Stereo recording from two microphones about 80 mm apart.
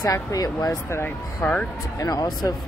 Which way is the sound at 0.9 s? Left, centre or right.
Left.